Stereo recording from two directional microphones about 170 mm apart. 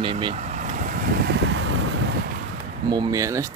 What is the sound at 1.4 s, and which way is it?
Vehicle, 90° right.